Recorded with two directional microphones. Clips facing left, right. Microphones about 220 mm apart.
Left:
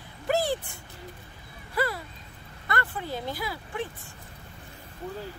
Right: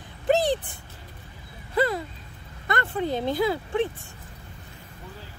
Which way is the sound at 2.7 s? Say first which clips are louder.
Right 6 dB; 20° right (ahead or behind).